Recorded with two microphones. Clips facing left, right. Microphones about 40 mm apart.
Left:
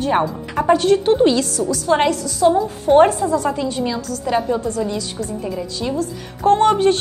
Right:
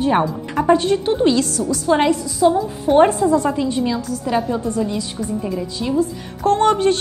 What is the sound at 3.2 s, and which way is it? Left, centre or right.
Speech, right.